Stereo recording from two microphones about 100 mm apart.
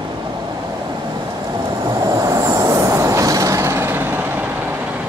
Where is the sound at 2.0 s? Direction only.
30° right (ahead or behind).